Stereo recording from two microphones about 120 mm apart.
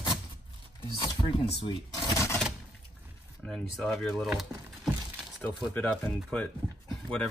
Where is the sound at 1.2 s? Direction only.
50° left (ahead or behind).